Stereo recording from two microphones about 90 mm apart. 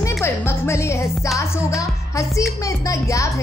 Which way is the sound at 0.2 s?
30° left (ahead or behind).